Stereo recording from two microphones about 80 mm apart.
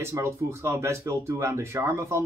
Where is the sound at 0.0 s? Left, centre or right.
Right.